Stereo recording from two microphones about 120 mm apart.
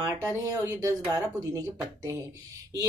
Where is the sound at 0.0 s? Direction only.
25° right (ahead or behind).